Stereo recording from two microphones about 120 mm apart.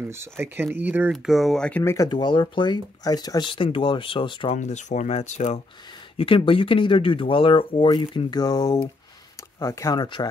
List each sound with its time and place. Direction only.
0.1 s speech: 20° right (ahead or behind)
1.1 s speech: centre (ahead or behind)
1.8 s speech: 20° left (ahead or behind)
2.0 s speech: 40° left (ahead or behind)
4.6 s speech: 80° left
6.1 s speech: 45° left (ahead or behind); by 10.0 s 25° left (ahead or behind)